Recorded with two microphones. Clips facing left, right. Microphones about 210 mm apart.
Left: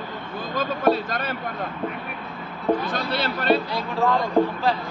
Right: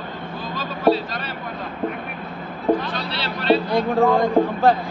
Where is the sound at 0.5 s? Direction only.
50° left (ahead or behind).